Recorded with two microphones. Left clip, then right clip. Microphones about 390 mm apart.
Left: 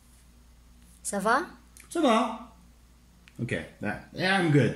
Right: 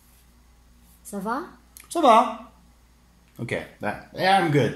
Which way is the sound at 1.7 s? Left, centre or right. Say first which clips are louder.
Right 8 dB; centre.